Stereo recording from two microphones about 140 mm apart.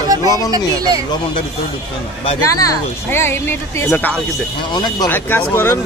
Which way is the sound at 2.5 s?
20° left (ahead or behind).